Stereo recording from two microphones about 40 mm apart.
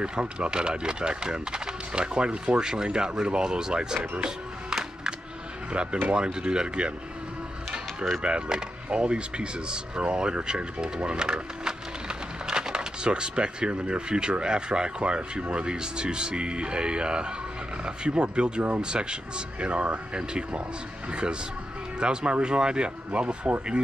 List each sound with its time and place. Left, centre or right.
0.0 s speech: right
4.2 s music: centre
5.7 s speech: right
8.2 s speech: right